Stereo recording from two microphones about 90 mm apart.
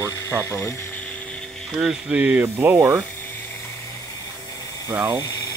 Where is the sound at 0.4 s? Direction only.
25° left (ahead or behind).